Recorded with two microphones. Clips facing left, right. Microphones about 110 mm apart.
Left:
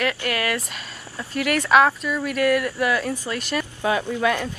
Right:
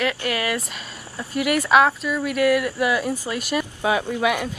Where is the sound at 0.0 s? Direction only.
15° right (ahead or behind).